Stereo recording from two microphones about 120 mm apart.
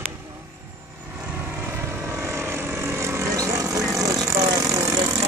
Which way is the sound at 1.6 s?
20° right (ahead or behind).